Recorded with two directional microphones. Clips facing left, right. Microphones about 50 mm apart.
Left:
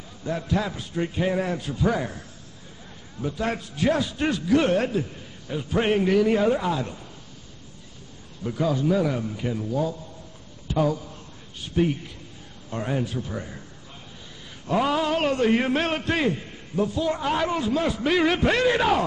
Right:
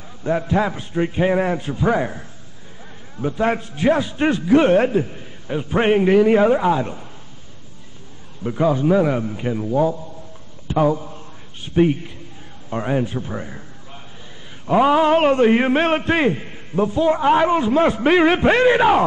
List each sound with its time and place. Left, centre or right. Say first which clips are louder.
0.2 s a man's voice: right 7 dB; right
8.5 s a man's voice: right 6 dB; right